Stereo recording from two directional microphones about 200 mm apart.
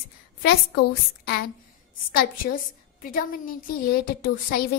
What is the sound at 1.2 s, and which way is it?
Speech, 50° left (ahead or behind).